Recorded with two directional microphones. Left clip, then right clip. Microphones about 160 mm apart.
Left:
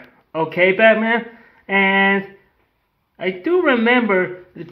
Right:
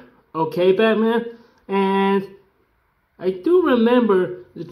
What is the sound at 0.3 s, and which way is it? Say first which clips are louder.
Speech: left 1 dB; 30° left (ahead or behind).